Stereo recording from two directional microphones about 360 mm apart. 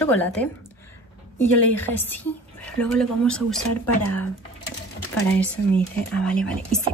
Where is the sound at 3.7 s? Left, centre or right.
Left.